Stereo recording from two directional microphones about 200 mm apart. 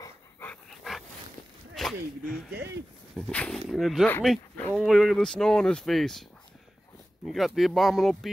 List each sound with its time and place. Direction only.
0.0 s dog: 10° left (ahead or behind)
1.8 s speech: centre (ahead or behind)
7.2 s speech: centre (ahead or behind)